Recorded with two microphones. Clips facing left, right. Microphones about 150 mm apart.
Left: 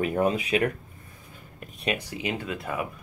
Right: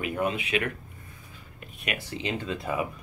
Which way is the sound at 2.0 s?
10° left (ahead or behind).